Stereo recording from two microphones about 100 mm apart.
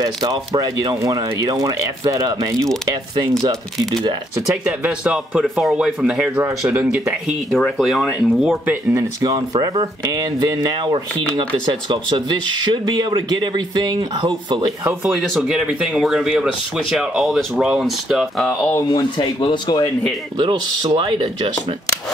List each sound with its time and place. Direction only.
0.6 s speech: 35° right (ahead or behind)
2.9 s speech: 45° right (ahead or behind)
3.7 s speech: centre (ahead or behind)
4.6 s speech: 15° right (ahead or behind)
6.7 s speech: 20° right (ahead or behind)
7.5 s speech: centre (ahead or behind)
8.9 s speech: 35° right (ahead or behind)
15.0 s speech: 5° right (ahead or behind)
18.9 s speech: 50° left (ahead or behind)
20.3 s speech: 45° right (ahead or behind)